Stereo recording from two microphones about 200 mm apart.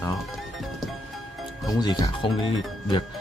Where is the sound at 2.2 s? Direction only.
25° left (ahead or behind).